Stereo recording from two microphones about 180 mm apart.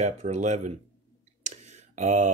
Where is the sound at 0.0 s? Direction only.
40° right (ahead or behind).